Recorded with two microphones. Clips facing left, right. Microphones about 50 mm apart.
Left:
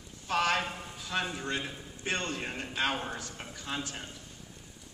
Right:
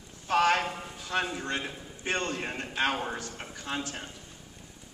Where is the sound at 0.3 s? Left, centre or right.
Centre.